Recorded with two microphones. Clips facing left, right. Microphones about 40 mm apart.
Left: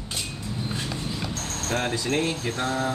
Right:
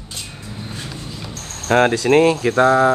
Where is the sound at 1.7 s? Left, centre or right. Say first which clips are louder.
Right 13 dB; right.